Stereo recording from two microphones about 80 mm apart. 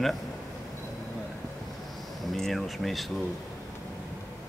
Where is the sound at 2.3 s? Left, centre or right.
Centre.